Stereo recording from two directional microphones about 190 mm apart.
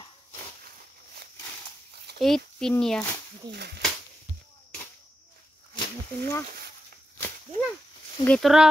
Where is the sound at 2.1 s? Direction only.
Centre (ahead or behind).